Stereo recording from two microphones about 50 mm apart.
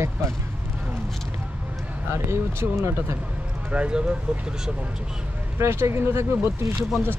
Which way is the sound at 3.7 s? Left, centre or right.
Right.